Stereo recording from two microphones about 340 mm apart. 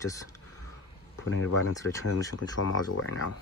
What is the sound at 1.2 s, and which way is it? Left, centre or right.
Speech, left.